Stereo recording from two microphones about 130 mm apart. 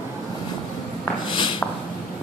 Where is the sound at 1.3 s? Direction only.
40° left (ahead or behind).